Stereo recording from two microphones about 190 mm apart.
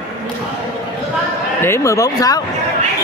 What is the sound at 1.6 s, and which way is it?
Speech, 15° left (ahead or behind).